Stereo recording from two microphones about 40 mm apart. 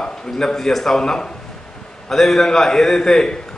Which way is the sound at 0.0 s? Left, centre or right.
Centre.